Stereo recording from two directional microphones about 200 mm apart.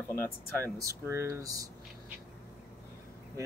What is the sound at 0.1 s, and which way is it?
Speech, 10° left (ahead or behind).